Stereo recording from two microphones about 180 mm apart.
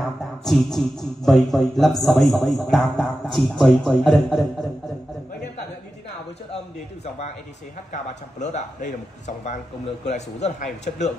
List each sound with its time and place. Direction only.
0.0 s speech: centre (ahead or behind)
7.9 s speech: 40° left (ahead or behind)
10.0 s speech: 40° left (ahead or behind)